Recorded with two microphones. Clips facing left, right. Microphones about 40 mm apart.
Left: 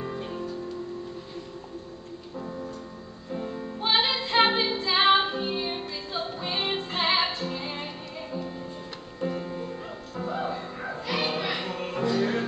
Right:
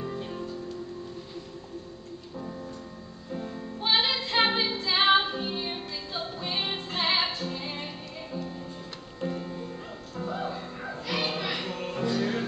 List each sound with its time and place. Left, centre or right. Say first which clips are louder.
0.0 s music: left 1 dB; centre
2.3 s music: left 3 dB; centre